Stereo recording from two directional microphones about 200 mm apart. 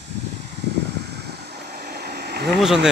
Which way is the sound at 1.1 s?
50° right (ahead or behind).